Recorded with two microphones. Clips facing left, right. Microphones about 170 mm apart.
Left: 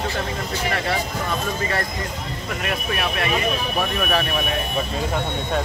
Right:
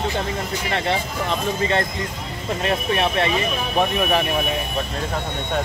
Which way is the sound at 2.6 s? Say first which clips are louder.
Right 5 dB; 25° right (ahead or behind).